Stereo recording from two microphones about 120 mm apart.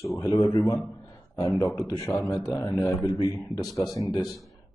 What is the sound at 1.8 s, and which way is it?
Speech, 35° left (ahead or behind).